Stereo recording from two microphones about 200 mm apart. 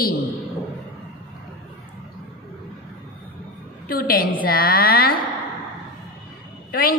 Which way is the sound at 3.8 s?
50° left (ahead or behind).